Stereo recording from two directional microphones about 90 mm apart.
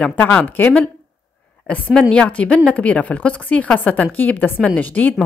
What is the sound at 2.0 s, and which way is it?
Speech, 10° left (ahead or behind).